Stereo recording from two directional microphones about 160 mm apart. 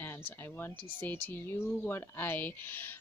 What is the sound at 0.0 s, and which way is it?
Speech, 15° left (ahead or behind).